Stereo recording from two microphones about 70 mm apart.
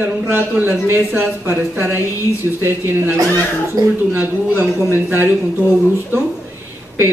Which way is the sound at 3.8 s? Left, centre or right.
Right.